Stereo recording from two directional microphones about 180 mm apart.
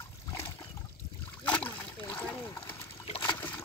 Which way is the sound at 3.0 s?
25° left (ahead or behind).